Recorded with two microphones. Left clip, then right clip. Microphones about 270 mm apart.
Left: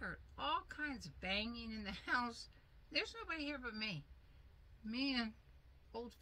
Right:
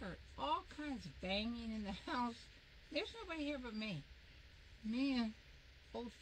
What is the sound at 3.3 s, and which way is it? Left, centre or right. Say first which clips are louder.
Speech: left 1 dB; centre.